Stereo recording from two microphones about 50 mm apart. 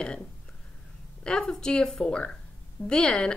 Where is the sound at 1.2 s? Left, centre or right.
Centre.